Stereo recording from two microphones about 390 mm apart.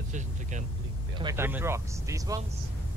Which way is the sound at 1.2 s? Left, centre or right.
Centre.